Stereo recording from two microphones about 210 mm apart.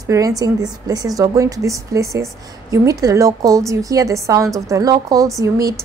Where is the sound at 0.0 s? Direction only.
15° right (ahead or behind).